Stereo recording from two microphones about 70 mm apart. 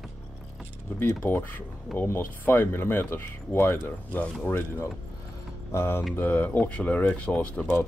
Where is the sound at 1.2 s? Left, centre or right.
Left.